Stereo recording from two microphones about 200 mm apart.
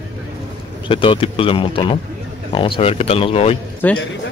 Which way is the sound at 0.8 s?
25° left (ahead or behind).